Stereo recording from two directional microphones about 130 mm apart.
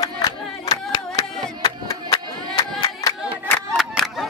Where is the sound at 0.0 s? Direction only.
30° left (ahead or behind).